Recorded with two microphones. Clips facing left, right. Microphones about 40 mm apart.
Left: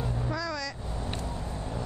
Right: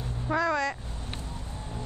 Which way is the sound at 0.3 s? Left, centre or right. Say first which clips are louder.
Right 12 dB; right.